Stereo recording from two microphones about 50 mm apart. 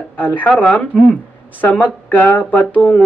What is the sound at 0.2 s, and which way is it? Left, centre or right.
Speech, left.